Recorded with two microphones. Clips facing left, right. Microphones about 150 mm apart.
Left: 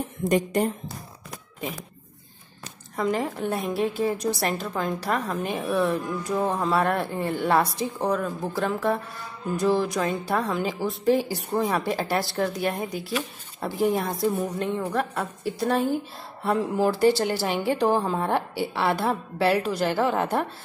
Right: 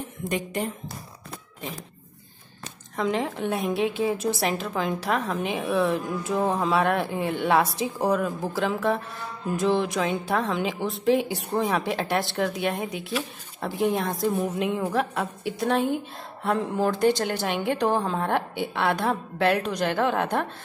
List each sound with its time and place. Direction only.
0.2 s speech: 40° left (ahead or behind)
3.0 s a woman's voice: centre (ahead or behind)